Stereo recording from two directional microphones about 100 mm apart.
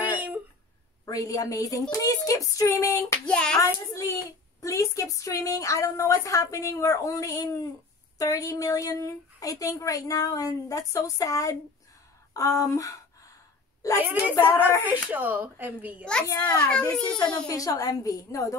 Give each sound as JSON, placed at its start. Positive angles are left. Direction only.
{"t": 0.0, "sound": "a sound", "side_deg": -15}
{"t": 1.0, "sound": "a woman's voice", "side_deg": 40}
{"t": 3.3, "sound": "hands", "side_deg": 10}
{"t": 3.6, "sound": "a woman's voice", "side_deg": 35}
{"t": 14.0, "sound": "speech", "side_deg": -15}
{"t": 14.3, "sound": "speech", "side_deg": 25}
{"t": 15.0, "sound": "speech", "side_deg": -15}
{"t": 16.3, "sound": "a woman's voice", "side_deg": 35}
{"t": 16.5, "sound": "hands", "side_deg": 15}
{"t": 17.5, "sound": "a woman's voice", "side_deg": 35}